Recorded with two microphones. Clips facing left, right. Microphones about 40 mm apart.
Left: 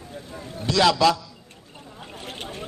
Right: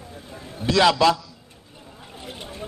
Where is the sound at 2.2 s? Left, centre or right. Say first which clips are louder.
Left 1 dB; left.